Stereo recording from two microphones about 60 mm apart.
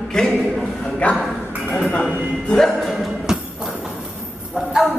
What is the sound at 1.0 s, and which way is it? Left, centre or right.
Speech, left.